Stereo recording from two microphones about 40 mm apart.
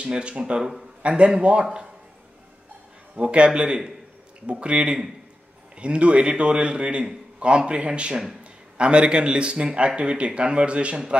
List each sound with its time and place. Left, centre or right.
0.0 s a man's voice: right
1.0 s a man's voice: right
3.2 s a man's voice: right